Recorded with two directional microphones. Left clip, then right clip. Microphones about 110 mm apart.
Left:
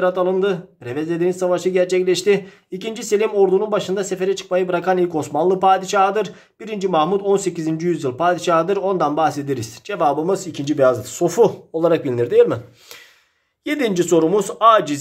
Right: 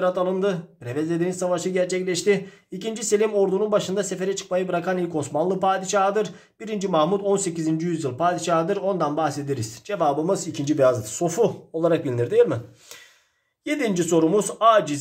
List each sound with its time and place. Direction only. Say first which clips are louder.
0.0 s speech: left 4 dB; 20° left (ahead or behind)
13.7 s speech: left 5 dB; 30° left (ahead or behind)